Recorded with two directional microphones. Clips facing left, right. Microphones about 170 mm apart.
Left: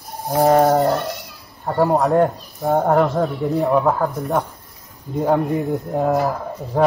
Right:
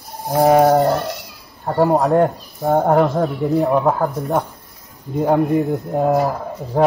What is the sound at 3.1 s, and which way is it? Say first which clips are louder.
Speech: right 2 dB; centre (ahead or behind).